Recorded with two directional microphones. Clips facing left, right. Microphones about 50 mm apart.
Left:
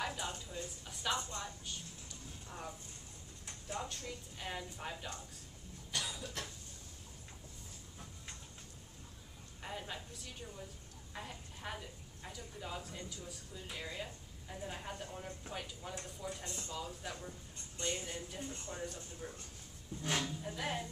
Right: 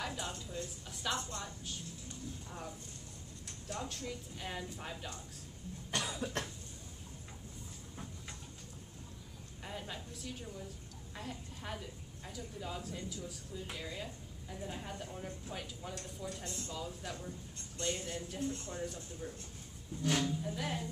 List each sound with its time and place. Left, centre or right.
0.0 s a woman's voice: centre
3.6 s a woman's voice: centre
5.9 s cough: right
9.6 s a woman's voice: centre
19.2 s a man's voice: centre